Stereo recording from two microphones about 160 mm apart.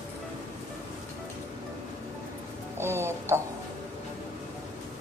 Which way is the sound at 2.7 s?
15° right (ahead or behind).